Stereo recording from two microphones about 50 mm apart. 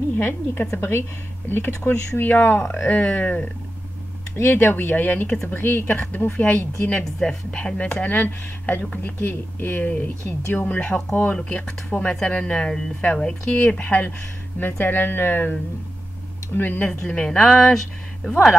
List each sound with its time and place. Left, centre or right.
0.2 s speech: left
1.8 s speech: left
2.6 s a woman's voice: centre
2.9 s speech: left
4.4 s speech: left
5.5 s speech: left
5.9 s speech: left
7.1 s a woman's voice: centre
8.0 s speech: left
10.8 s a woman's voice: centre
14.9 s speech: left
16.5 s speech: left
17.0 s a woman's voice: left